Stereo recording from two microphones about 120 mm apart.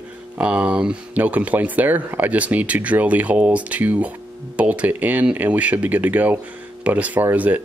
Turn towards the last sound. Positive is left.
turn(degrees=-15)  # may be behind; listen again after turning